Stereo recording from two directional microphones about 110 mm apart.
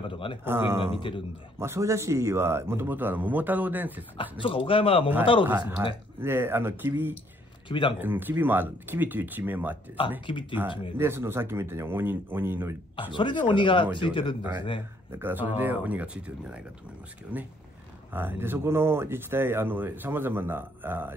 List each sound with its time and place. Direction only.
0.1 s a sound: 50° left (ahead or behind)
0.5 s speech: 20° right (ahead or behind)
0.9 s speech: 50° left (ahead or behind)
1.6 s speech: 25° right (ahead or behind)
4.2 s a man's voice: 50° left (ahead or behind)
6.2 s speech: 20° right (ahead or behind)
7.6 s speech: 50° left (ahead or behind)
8.0 s speech: 15° right (ahead or behind)
10.3 s speech: 50° left (ahead or behind)
11.0 s speech: 20° right (ahead or behind)
12.9 s speech: 50° left (ahead or behind)
15.0 s speech: 20° right (ahead or behind)